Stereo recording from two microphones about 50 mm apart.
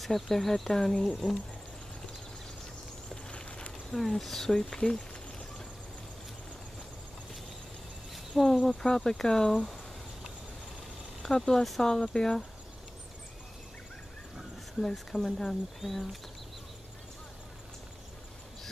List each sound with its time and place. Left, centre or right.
0.0 s speech: centre
3.3 s a sound: centre
3.9 s speech: centre
8.1 s a sound: centre
8.6 s speech: centre
11.2 s speech: centre
14.8 s speech: centre